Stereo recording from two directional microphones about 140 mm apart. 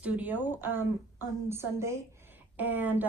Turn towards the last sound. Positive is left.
turn(degrees=-15)  # may be behind; listen again after turning